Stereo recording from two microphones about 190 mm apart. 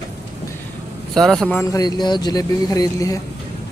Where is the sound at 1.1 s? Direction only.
Centre (ahead or behind).